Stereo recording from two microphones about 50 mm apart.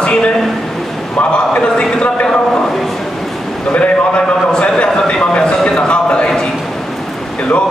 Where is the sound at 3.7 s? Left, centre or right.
Left.